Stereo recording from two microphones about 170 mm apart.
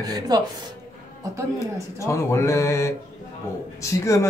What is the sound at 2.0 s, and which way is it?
Mantra, 15° left (ahead or behind).